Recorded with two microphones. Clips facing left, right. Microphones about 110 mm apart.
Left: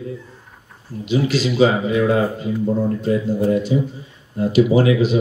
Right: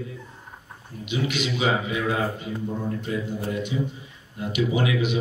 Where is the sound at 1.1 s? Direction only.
35° left (ahead or behind).